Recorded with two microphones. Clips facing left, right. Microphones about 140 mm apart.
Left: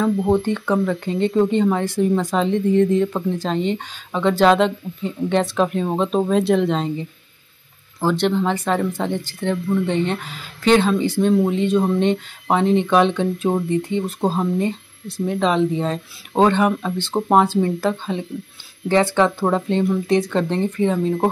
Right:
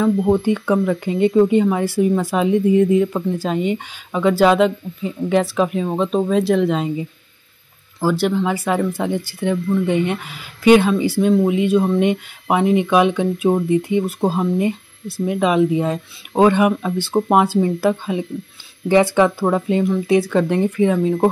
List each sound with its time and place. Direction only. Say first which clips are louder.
0.0 s speech: right 2 dB; 5° right (ahead or behind)